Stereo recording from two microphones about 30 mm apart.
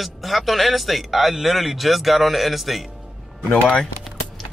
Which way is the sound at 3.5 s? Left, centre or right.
Left.